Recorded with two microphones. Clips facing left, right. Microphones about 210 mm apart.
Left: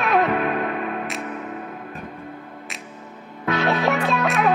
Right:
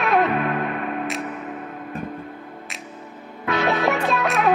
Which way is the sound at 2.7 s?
Centre (ahead or behind).